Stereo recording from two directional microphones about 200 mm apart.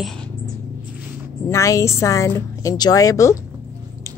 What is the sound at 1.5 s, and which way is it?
A woman's voice, 15° left (ahead or behind).